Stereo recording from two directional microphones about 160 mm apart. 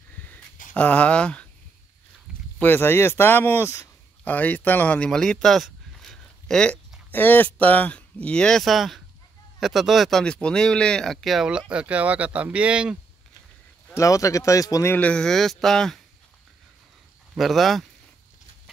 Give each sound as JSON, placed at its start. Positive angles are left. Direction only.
{"t": 0.7, "sound": "speech", "side_deg": 5}
{"t": 2.6, "sound": "speech", "side_deg": 15}
{"t": 13.9, "sound": "speech", "side_deg": 20}
{"t": 17.4, "sound": "speech", "side_deg": 0}